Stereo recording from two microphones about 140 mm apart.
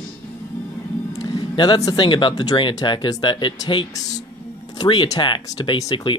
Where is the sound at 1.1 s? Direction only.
30° left (ahead or behind).